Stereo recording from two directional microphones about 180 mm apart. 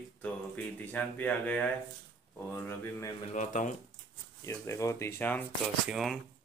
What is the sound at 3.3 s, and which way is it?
Speech, 45° left (ahead or behind).